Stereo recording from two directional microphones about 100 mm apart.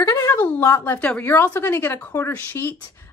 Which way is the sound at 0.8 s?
15° left (ahead or behind).